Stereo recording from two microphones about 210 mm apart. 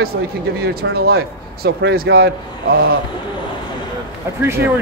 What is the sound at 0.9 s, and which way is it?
Speech, 50° right (ahead or behind).